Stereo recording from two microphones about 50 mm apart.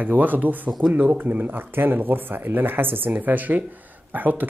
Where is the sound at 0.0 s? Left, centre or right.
Right.